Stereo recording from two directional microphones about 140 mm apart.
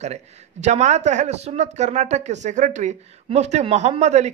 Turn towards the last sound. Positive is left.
turn(degrees=-55)  # may be behind; listen again after turning